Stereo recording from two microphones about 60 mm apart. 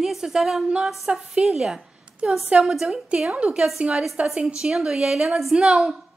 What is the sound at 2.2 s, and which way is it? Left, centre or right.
Speech, right.